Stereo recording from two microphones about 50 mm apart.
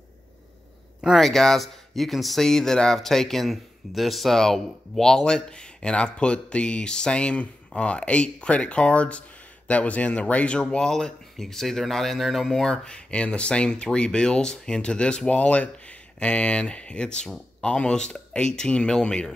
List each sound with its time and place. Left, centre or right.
1.1 s speech: centre